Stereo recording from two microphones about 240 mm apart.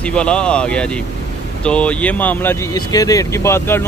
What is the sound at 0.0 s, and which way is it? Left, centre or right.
Speech, centre.